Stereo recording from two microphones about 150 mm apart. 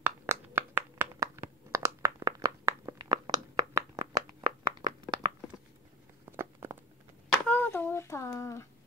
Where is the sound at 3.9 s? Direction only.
25° right (ahead or behind).